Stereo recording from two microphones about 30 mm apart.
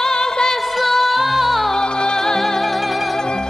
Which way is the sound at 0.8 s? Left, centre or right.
Centre.